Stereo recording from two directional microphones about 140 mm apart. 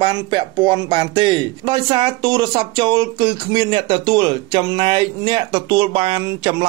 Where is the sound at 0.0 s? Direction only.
35° right (ahead or behind).